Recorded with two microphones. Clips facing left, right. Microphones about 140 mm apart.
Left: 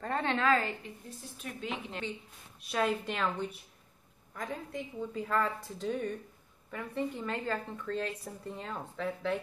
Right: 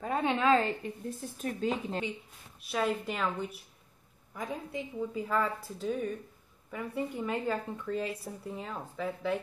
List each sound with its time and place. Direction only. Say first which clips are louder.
0.0 s a woman's voice: right 2 dB; 10° right (ahead or behind)
1.4 s speech: right 7 dB; 40° right (ahead or behind)
2.6 s speech: even; centre (ahead or behind)